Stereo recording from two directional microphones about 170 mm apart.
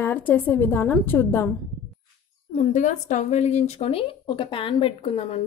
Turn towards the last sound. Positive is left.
turn(degrees=35)  # may be behind; listen again after turning